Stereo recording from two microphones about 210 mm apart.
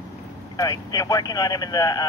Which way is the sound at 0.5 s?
20° left (ahead or behind).